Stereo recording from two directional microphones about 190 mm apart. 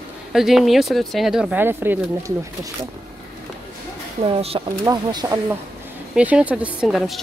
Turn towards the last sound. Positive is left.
turn(degrees=0)  # may be behind; listen again after turning